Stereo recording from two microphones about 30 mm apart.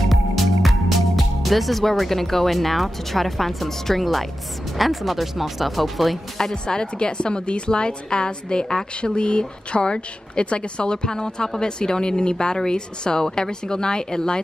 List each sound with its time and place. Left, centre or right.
0.0 s speech: centre
6.5 s a woman's voice: left
9.9 s speech: left